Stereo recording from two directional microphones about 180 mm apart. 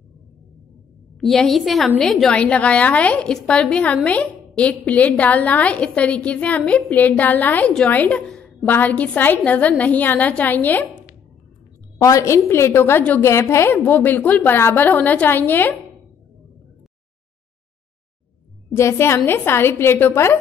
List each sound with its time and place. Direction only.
1.2 s a woman's voice: centre (ahead or behind)
18.8 s a woman's voice: 15° left (ahead or behind)